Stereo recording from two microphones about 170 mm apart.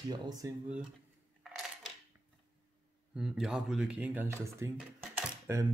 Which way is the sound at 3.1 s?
Centre (ahead or behind).